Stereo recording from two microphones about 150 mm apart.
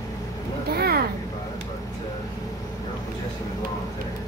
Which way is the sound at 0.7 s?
90° right.